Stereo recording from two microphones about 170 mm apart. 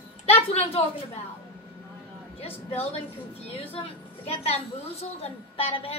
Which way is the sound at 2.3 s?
35° left (ahead or behind).